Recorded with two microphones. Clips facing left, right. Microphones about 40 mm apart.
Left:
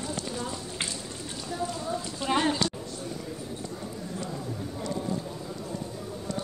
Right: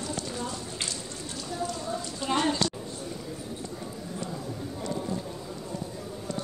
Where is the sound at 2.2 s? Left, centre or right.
Centre.